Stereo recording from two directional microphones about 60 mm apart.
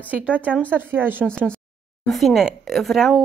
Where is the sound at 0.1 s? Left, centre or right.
Right.